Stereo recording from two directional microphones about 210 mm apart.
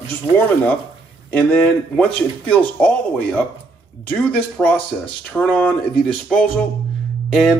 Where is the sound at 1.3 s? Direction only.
5° left (ahead or behind).